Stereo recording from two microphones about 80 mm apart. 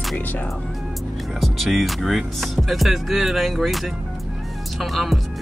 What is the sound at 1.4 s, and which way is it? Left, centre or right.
Music, centre.